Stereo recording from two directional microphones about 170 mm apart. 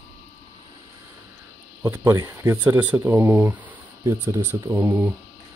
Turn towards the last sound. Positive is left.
turn(degrees=-10)  # may be behind; listen again after turning